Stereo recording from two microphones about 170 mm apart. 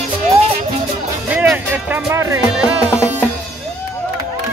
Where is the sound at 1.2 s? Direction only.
5° right (ahead or behind).